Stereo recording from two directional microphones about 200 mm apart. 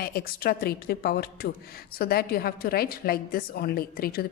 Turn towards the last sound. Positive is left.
turn(degrees=50)  # may be behind; listen again after turning